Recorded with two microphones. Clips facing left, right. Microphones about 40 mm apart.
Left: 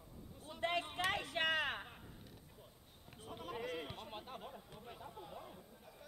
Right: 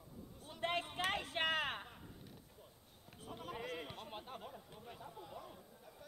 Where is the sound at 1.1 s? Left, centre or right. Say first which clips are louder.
Even; right.